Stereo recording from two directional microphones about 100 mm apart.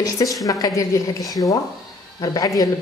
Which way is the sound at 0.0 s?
35° left (ahead or behind).